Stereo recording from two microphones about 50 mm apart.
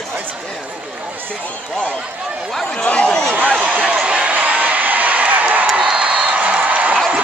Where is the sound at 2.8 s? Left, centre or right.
Left.